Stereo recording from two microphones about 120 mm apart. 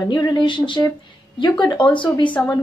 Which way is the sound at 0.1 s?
35° left (ahead or behind).